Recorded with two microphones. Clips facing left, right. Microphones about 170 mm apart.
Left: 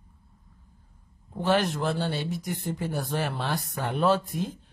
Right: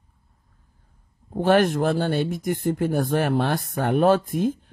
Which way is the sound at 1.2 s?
50° right (ahead or behind).